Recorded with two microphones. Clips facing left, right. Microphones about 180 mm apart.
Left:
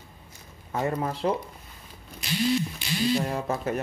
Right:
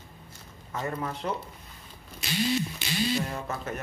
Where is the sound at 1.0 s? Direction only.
30° left (ahead or behind).